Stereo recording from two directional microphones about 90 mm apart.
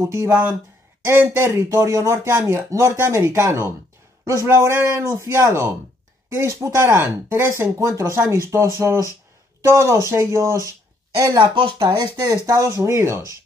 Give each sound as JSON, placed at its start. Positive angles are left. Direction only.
{"t": 0.0, "sound": "speech", "side_deg": -30}
{"t": 11.3, "sound": "speech", "side_deg": -70}
{"t": 12.4, "sound": "speech", "side_deg": -40}